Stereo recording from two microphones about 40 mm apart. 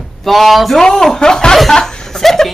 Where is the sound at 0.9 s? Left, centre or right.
Centre.